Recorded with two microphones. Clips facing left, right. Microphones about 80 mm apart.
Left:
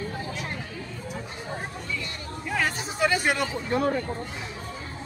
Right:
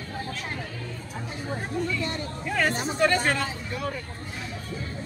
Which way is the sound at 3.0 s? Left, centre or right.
Centre.